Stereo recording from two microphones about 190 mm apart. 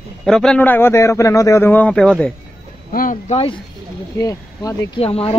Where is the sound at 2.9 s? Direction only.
45° left (ahead or behind).